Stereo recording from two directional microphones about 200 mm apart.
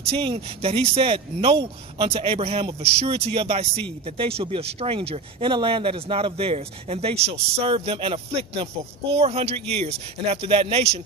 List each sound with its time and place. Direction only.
0.1 s speech: 30° right (ahead or behind)